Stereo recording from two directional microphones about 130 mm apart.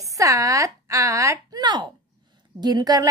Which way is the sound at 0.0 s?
25° right (ahead or behind).